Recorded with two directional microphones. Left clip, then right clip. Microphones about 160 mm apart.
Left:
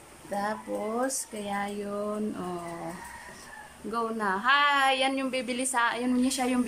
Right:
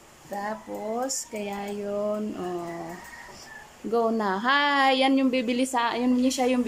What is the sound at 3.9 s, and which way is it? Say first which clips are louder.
A woman's voice: right 5 dB; 30° right (ahead or behind).